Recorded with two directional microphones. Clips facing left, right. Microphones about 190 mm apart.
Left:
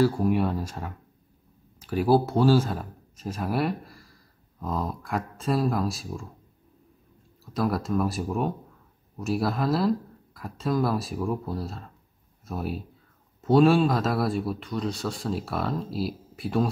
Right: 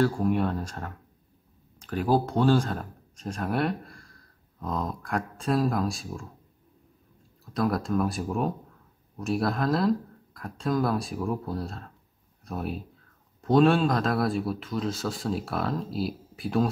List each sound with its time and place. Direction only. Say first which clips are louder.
0.0 s speech: left 2 dB; 5° left (ahead or behind)
7.4 s speech: even; centre (ahead or behind)